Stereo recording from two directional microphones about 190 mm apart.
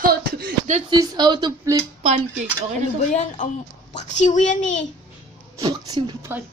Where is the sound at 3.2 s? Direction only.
40° left (ahead or behind).